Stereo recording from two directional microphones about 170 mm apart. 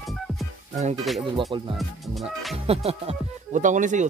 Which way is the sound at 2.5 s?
35° right (ahead or behind).